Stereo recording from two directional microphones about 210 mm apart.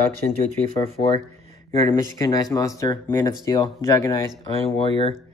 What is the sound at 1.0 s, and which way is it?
Speech, 30° left (ahead or behind).